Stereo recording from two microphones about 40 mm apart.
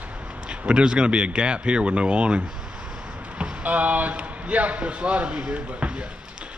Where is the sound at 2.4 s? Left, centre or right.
Centre.